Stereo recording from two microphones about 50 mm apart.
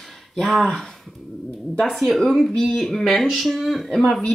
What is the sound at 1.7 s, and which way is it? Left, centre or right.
Speech, centre.